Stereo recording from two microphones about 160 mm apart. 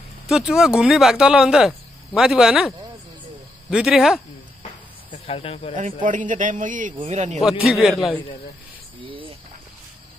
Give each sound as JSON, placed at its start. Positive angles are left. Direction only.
{"t": 0.3, "sound": "speech", "side_deg": 0}
{"t": 3.7, "sound": "speech", "side_deg": -5}
{"t": 5.2, "sound": "speech", "side_deg": 35}
{"t": 6.0, "sound": "a man's voice", "side_deg": -55}
{"t": 7.4, "sound": "speech", "side_deg": 0}
{"t": 9.0, "sound": "a sound", "side_deg": -35}